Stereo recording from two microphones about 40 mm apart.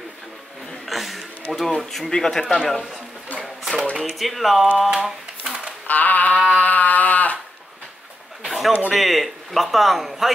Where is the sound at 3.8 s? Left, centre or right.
Left.